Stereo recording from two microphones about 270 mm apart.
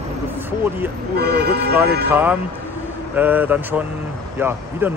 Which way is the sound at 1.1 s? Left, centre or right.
Right.